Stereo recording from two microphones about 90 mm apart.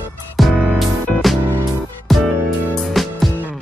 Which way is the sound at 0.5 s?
15° right (ahead or behind).